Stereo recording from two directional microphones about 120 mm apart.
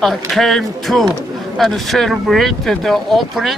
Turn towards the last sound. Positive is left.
turn(degrees=0)  # may be behind; listen again after turning